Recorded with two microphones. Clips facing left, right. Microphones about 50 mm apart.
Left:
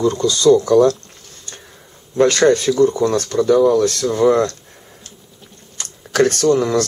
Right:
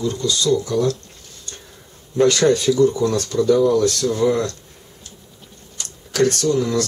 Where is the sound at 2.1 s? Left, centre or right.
Left.